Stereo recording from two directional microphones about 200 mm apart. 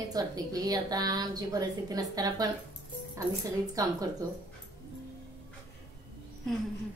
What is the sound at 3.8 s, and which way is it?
Speech, 15° right (ahead or behind).